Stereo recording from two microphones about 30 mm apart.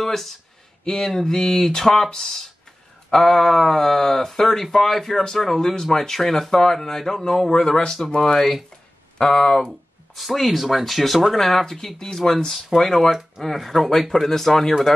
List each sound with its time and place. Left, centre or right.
0.0 s a sound: centre
0.8 s speech: centre
7.5 s speech: left
9.7 s a sound: centre
10.3 s speech: centre
11.3 s speech: centre
12.2 s speech: left
12.7 s speech: centre
14.3 s speech: centre